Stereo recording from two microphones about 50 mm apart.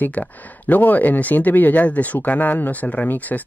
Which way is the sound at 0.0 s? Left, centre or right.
Left.